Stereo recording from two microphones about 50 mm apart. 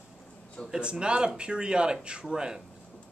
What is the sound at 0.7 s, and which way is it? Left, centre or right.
A man's voice, centre.